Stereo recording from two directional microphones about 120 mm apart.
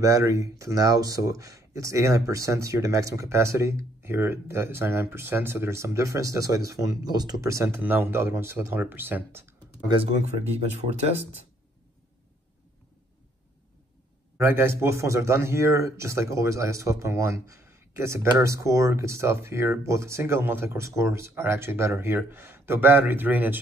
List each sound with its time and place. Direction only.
0.0 s speech: 25° right (ahead or behind)
14.4 s speech: 20° right (ahead or behind)